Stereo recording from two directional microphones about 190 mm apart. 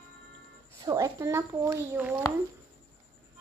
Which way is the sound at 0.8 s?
15° right (ahead or behind).